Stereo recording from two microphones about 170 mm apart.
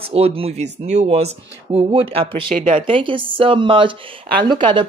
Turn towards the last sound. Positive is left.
turn(degrees=-25)  # may be behind; listen again after turning